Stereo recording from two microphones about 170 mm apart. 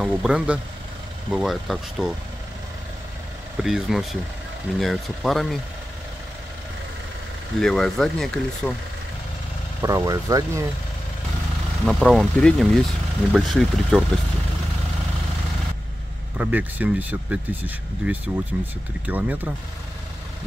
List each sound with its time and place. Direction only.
0.0 s speech: 5° right (ahead or behind)
3.6 s speech: centre (ahead or behind)
7.6 s speech: 5° left (ahead or behind)
9.8 s speech: 20° right (ahead or behind)
11.8 s speech: centre (ahead or behind)
16.3 s speech: 10° right (ahead or behind)